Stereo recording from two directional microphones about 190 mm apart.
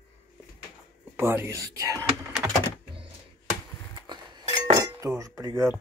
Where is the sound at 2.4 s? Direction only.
10° right (ahead or behind).